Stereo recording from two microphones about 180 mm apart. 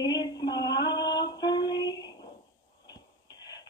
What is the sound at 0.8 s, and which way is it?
Female singing, 25° left (ahead or behind).